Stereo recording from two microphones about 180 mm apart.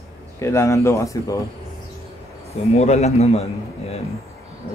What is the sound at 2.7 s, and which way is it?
Speech, 35° left (ahead or behind).